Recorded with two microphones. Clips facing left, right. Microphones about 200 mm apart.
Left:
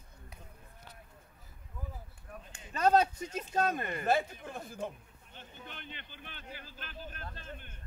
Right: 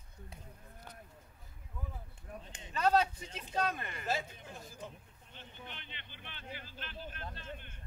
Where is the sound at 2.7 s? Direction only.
45° left (ahead or behind).